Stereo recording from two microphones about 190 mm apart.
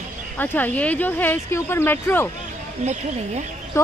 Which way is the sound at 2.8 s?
40° right (ahead or behind).